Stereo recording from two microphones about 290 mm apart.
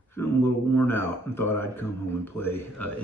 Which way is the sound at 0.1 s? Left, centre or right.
Centre.